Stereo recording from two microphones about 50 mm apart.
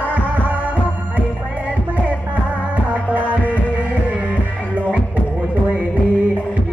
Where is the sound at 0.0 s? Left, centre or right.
Right.